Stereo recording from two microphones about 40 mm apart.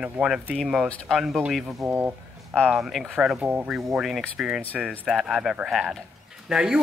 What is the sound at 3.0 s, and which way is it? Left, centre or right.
Speech, centre.